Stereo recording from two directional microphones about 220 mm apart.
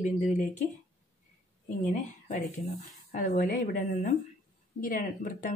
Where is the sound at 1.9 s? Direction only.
35° left (ahead or behind).